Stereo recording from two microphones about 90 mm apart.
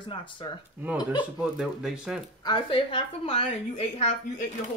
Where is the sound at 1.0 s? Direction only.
60° left (ahead or behind).